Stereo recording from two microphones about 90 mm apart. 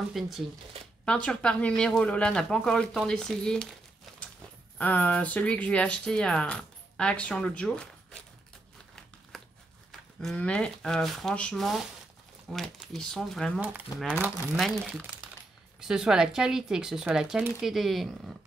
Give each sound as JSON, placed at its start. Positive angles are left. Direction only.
{"t": 0.2, "sound": "speech", "side_deg": 0}
{"t": 1.0, "sound": "speech", "side_deg": 10}
{"t": 4.7, "sound": "speech", "side_deg": 20}
{"t": 9.3, "sound": "crumpling", "side_deg": 0}
{"t": 10.3, "sound": "speech", "side_deg": 10}
{"t": 13.6, "sound": "speech", "side_deg": -20}
{"t": 15.8, "sound": "speech", "side_deg": -5}